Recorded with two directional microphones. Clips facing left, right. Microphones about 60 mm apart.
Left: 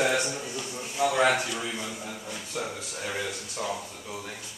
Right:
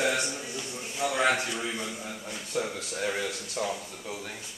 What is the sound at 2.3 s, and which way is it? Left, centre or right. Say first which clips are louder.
Speech: right 3 dB; centre.